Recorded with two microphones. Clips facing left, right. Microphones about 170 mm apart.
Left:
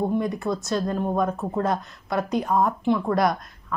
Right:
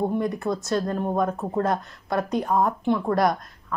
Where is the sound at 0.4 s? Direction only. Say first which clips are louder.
Even; 50° right (ahead or behind).